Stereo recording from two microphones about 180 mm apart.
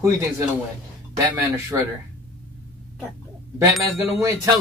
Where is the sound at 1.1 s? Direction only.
20° right (ahead or behind).